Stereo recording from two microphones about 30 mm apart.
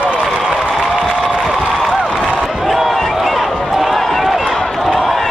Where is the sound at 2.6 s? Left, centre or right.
Centre.